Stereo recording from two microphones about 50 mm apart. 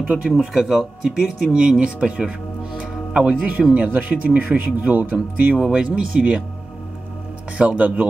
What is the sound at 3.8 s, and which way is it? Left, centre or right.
Speech, right.